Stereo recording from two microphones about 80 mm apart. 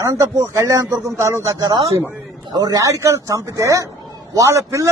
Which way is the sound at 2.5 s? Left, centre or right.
Right.